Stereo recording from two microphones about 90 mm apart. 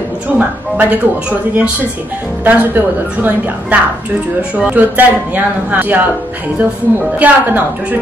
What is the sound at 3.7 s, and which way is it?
A woman's voice, 15° right (ahead or behind).